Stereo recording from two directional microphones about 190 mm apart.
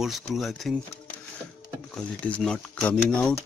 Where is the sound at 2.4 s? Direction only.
5° left (ahead or behind).